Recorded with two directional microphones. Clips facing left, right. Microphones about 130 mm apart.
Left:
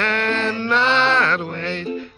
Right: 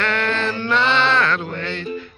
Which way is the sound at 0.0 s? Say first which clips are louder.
Even; 40° left (ahead or behind).